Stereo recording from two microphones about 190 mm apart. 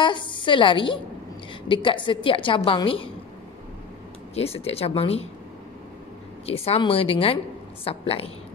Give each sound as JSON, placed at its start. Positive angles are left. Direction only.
{"t": 0.0, "sound": "a woman's voice", "side_deg": 25}
{"t": 4.4, "sound": "a woman's voice", "side_deg": 30}
{"t": 6.4, "sound": "a woman's voice", "side_deg": 30}